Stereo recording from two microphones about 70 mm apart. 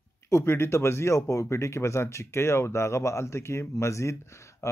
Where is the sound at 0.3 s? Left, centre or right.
Left.